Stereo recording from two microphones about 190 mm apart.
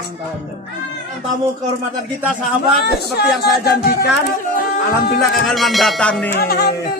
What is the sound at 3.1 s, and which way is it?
Music, 60° left (ahead or behind).